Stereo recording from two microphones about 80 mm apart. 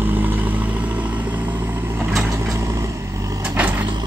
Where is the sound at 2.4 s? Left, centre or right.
Right.